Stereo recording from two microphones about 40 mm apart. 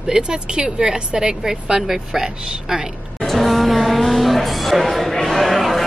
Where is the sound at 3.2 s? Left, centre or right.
Centre.